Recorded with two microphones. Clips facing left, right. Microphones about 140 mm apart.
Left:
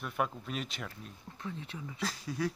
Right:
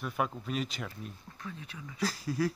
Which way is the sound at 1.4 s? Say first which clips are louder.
Left 3 dB; 25° left (ahead or behind).